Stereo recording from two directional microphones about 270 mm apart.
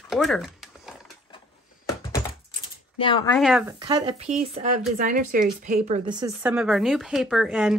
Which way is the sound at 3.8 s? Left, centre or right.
Centre.